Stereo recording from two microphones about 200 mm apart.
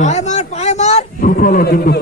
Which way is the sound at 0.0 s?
35° left (ahead or behind).